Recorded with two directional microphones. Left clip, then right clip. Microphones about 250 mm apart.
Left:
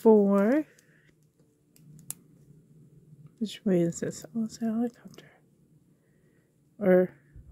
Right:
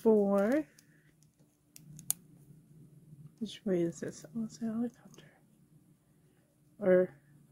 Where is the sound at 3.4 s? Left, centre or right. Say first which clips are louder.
Left 6 dB; left.